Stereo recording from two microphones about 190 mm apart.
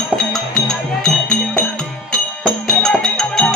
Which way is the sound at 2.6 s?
5° left (ahead or behind).